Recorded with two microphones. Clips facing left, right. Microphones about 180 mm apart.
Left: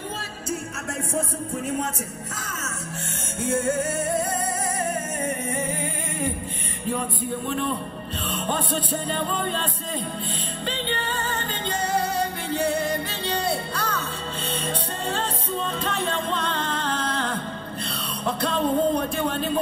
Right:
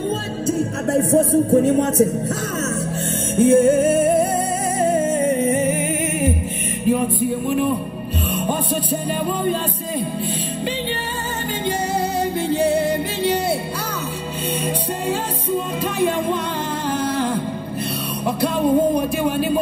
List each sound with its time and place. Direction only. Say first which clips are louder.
0.5 s music: right 11 dB; 35° right (ahead or behind)
1.6 s music: right 13 dB; 70° right (ahead or behind)
3.3 s music: right 11 dB; 25° right (ahead or behind)
9.4 s music: right 6 dB; 10° right (ahead or behind)
12.4 s music: right 7 dB; 20° right (ahead or behind)
15.5 s music: right 6 dB; 15° right (ahead or behind)
18.2 s music: right 5 dB; 15° right (ahead or behind)